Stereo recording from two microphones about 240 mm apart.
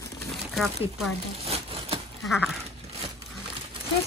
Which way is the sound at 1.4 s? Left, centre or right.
Right.